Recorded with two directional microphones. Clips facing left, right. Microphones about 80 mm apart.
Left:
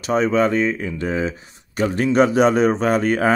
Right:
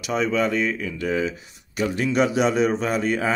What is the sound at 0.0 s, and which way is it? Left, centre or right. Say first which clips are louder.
Speech: left 5 dB; left.